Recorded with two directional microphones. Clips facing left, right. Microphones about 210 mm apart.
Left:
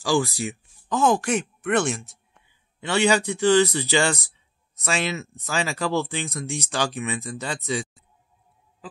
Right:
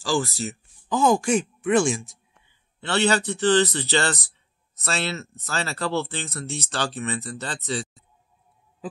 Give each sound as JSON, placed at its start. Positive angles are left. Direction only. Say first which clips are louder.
{"t": 0.0, "sound": "speech", "louder": "left 2 dB", "side_deg": 10}
{"t": 0.8, "sound": "speech", "louder": "right 1 dB", "side_deg": 0}
{"t": 2.8, "sound": "speech", "louder": "left 1 dB", "side_deg": 10}